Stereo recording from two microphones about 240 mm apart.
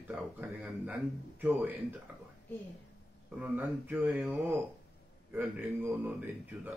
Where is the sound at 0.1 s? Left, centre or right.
Centre.